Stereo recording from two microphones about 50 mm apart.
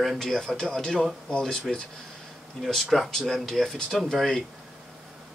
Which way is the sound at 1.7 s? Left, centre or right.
Centre.